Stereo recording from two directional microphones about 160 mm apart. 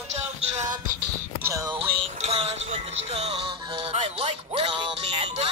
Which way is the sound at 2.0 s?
35° right (ahead or behind).